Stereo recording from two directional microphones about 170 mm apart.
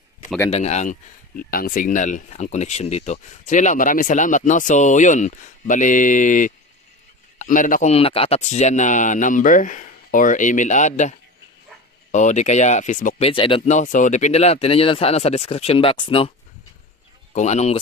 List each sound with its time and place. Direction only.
0.5 s a man's voice: 40° left (ahead or behind)
7.9 s speech: 35° left (ahead or behind)
13.3 s speech: 30° left (ahead or behind)
13.7 s speech: 45° left (ahead or behind)
17.3 s speech: 45° left (ahead or behind)